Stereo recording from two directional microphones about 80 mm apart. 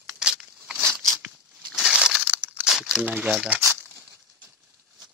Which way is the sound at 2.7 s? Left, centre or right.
Centre.